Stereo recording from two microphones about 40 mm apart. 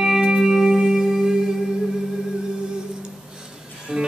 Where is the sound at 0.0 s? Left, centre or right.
Centre.